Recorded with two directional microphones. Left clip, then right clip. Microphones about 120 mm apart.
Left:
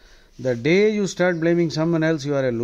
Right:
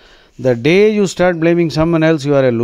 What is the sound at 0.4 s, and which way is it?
Speech, 35° right (ahead or behind).